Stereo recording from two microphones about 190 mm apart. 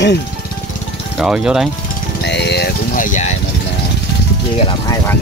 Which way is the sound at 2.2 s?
65° left (ahead or behind).